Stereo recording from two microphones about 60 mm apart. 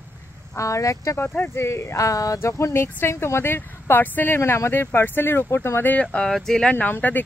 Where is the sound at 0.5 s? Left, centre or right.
Left.